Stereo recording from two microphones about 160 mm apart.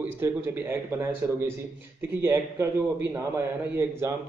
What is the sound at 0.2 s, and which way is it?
A man's voice, 15° right (ahead or behind).